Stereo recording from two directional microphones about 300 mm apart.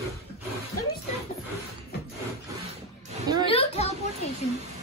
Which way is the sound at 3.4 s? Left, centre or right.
Centre.